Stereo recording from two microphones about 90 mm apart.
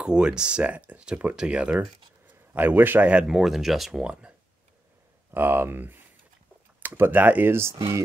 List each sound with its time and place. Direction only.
0.0 s speech: 10° right (ahead or behind)
5.3 s speech: 25° right (ahead or behind)